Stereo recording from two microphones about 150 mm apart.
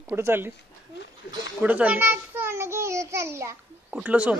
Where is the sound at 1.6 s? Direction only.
10° right (ahead or behind).